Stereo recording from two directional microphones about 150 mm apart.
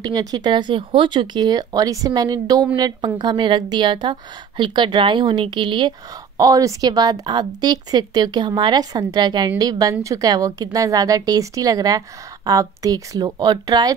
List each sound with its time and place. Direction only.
0.0 s a woman's voice: 25° right (ahead or behind)